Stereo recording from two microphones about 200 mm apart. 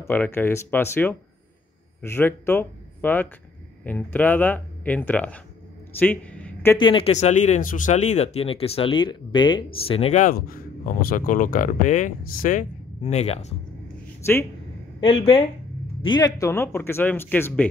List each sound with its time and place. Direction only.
0.0 s speech: 10° left (ahead or behind)
5.9 s a sound: 10° left (ahead or behind)
6.8 s speech: 25° left (ahead or behind)
15.0 s speech: 25° left (ahead or behind); by 17.6 s 10° left (ahead or behind)